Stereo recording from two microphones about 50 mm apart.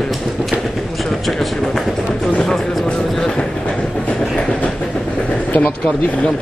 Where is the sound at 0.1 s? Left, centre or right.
Centre.